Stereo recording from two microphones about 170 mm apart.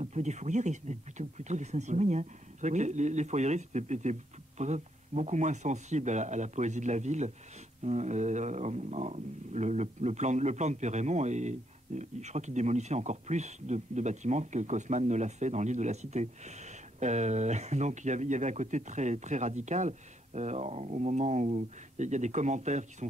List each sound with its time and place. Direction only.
0.0 s speech: 40° right (ahead or behind)